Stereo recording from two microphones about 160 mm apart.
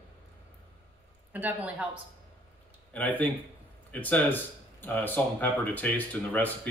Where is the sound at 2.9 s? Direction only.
10° left (ahead or behind).